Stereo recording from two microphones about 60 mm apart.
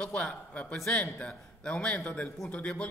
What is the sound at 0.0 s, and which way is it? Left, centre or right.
A man's voice, centre.